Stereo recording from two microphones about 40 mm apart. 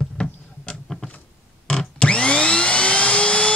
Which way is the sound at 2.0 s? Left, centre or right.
Left.